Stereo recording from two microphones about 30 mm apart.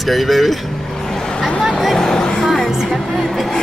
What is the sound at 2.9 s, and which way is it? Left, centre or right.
Music, centre.